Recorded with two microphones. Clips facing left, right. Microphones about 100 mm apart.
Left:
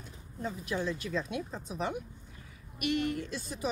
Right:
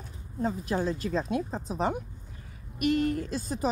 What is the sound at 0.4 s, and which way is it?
Speech, 40° right (ahead or behind).